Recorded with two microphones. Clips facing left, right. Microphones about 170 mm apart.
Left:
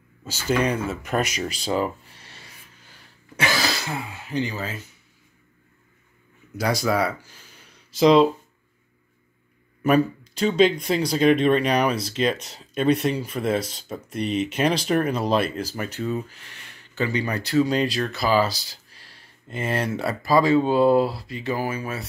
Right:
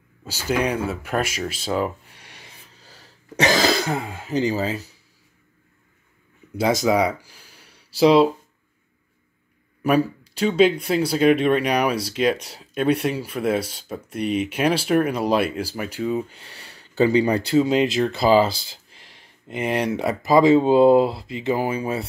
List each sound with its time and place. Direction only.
0.2 s speech: 10° right (ahead or behind)
2.8 s throat clearing: 35° right (ahead or behind)
6.5 s speech: 20° right (ahead or behind)
9.8 s speech: 10° right (ahead or behind)
16.3 s speech: 30° right (ahead or behind)